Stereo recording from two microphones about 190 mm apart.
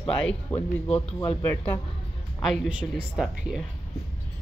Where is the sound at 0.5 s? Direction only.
5° left (ahead or behind).